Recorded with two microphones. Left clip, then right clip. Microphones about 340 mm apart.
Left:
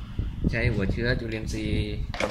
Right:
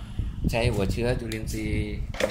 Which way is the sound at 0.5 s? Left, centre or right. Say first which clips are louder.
Right 3 dB; centre.